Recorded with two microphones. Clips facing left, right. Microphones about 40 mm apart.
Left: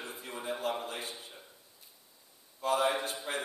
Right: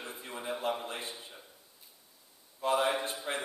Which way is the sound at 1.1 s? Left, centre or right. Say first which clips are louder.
Even; centre.